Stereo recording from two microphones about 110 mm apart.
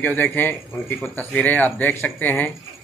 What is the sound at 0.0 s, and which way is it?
Speech, 15° left (ahead or behind).